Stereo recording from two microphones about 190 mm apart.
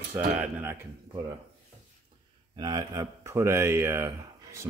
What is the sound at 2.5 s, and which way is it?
Speech, 20° right (ahead or behind).